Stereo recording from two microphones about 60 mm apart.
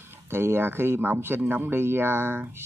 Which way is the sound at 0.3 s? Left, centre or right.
Right.